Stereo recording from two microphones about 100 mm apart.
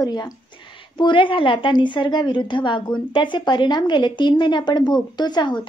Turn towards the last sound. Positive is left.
turn(degrees=45)  # may be behind; listen again after turning